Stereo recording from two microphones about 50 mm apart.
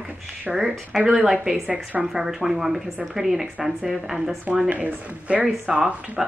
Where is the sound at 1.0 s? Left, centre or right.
Right.